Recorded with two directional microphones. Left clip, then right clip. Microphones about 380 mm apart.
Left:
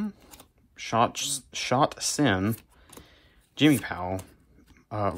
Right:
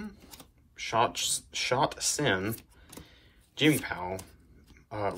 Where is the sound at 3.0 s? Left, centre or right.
Centre.